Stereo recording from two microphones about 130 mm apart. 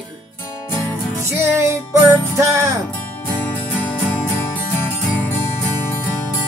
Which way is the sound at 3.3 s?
15° left (ahead or behind).